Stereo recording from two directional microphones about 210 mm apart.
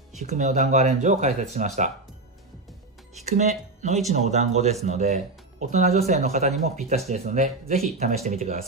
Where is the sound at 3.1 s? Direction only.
35° right (ahead or behind).